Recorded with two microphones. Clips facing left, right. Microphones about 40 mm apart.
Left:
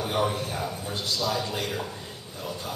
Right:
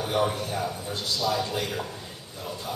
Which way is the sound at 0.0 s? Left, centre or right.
Centre.